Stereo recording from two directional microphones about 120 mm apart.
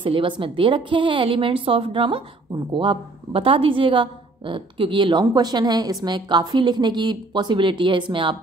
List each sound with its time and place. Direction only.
0.0 s a woman's voice: 45° right (ahead or behind)